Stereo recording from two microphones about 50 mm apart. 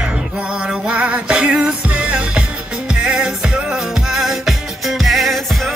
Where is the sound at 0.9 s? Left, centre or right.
Right.